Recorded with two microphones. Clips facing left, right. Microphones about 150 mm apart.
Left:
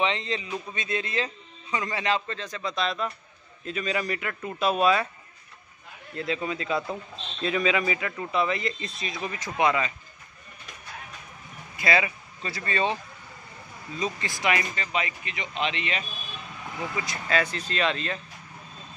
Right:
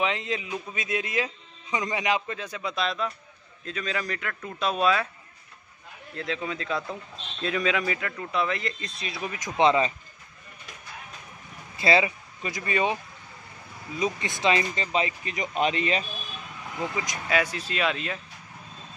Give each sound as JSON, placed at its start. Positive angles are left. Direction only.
{"t": 0.0, "sound": "a man's voice", "side_deg": -5}
{"t": 6.1, "sound": "a man's voice", "side_deg": 0}
{"t": 9.6, "sound": "speech", "side_deg": -30}
{"t": 11.7, "sound": "speech", "side_deg": -25}
{"t": 12.4, "sound": "speech", "side_deg": -15}
{"t": 16.9, "sound": "speech", "side_deg": -15}